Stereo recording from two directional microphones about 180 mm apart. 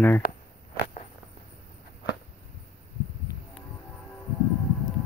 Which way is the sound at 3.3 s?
20° left (ahead or behind).